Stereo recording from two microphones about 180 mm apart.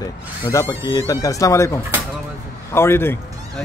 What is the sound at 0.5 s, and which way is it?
A man's voice, 20° left (ahead or behind).